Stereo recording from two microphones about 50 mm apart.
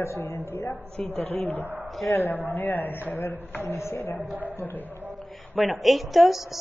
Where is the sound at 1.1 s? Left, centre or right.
Left.